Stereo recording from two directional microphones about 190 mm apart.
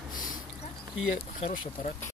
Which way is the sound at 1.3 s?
35° left (ahead or behind).